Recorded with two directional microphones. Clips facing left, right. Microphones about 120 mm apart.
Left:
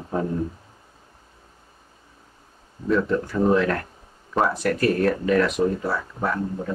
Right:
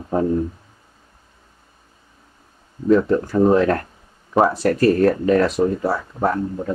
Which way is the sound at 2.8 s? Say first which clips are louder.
Right 6 dB; 35° right (ahead or behind).